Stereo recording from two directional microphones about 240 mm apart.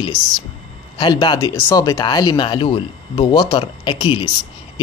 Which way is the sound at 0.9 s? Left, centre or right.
Left.